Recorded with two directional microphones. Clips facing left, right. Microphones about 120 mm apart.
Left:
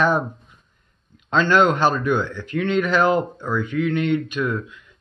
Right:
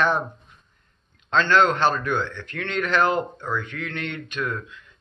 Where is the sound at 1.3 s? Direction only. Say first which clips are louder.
Left 2 dB; 10° left (ahead or behind).